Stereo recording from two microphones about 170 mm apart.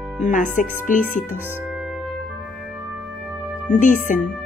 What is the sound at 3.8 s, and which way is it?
Music, 50° left (ahead or behind).